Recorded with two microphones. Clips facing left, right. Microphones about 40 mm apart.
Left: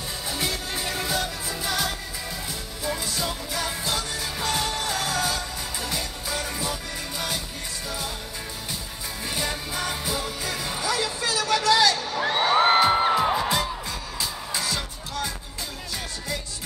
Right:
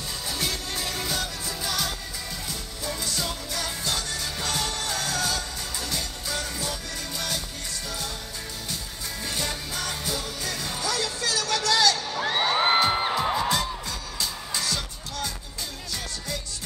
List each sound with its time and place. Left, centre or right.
0.3 s music: centre
9.2 s music: centre